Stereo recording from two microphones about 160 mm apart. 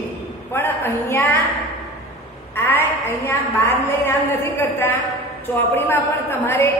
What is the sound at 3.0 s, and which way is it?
A woman's voice, 15° left (ahead or behind).